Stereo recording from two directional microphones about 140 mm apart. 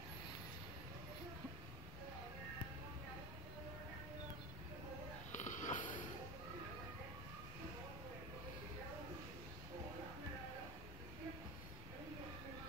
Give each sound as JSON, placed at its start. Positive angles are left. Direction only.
{"t": 5.3, "sound": "sniff", "side_deg": 65}